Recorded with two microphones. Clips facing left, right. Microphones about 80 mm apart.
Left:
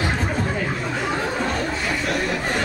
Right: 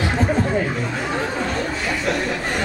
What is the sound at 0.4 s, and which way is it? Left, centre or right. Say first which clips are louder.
Chatter: right 4 dB; centre.